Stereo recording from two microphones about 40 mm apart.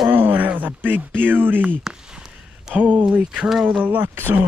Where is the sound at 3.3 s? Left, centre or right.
Centre.